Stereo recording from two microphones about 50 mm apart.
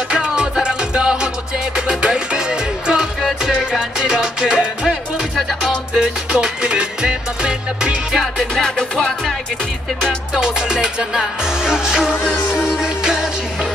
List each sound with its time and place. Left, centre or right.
0.1 s music: centre
3.2 s music: centre
4.0 s music: centre
5.9 s music: centre
8.2 s music: centre
8.6 s music: centre
10.3 s music: centre